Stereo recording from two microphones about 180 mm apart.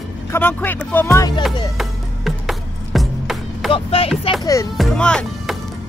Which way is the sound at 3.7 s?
35° left (ahead or behind).